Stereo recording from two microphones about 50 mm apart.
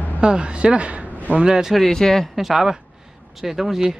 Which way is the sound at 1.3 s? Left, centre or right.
Centre.